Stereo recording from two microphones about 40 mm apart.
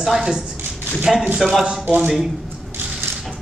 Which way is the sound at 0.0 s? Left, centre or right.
Centre.